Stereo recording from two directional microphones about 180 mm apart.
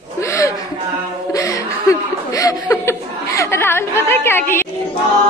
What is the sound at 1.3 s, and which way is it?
Chuckle, 20° left (ahead or behind).